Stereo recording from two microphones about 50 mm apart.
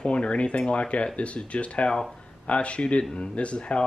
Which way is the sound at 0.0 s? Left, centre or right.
Left.